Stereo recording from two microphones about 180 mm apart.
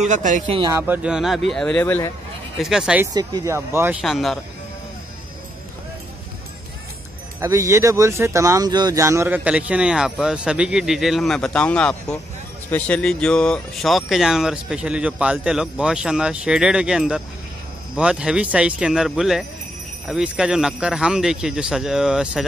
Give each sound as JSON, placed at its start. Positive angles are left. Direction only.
{"t": 0.0, "sound": "speech", "side_deg": -45}
{"t": 0.8, "sound": "speech", "side_deg": -10}
{"t": 2.6, "sound": "speech", "side_deg": -5}
{"t": 3.1, "sound": "speech", "side_deg": -25}
{"t": 4.0, "sound": "speech", "side_deg": 0}
{"t": 7.3, "sound": "speech", "side_deg": -15}